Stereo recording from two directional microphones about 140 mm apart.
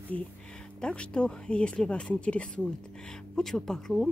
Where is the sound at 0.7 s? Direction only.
5° left (ahead or behind).